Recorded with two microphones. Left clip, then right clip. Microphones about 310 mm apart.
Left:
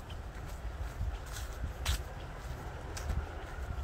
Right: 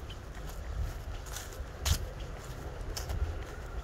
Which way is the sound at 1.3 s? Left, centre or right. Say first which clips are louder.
Right 4 dB; right.